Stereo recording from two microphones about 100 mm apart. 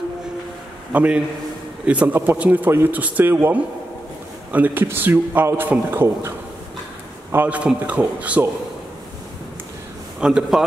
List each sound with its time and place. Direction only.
0.9 s a man's voice: 10° right (ahead or behind)
7.3 s a man's voice: 15° right (ahead or behind)
10.2 s a man's voice: 10° right (ahead or behind)